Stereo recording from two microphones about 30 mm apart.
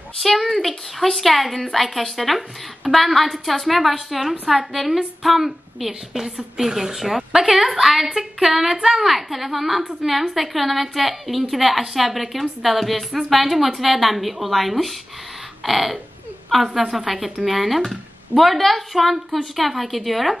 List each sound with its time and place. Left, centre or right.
0.2 s a woman's voice: centre